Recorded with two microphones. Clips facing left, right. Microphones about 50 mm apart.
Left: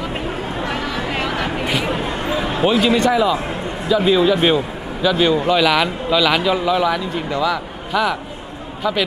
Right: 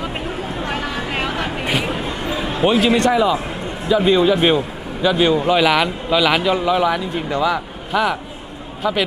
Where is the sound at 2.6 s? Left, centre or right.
Centre.